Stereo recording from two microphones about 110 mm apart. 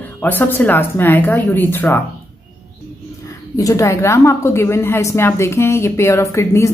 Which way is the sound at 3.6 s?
30° left (ahead or behind).